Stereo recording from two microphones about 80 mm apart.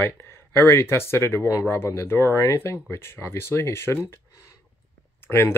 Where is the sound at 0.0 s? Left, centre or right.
Left.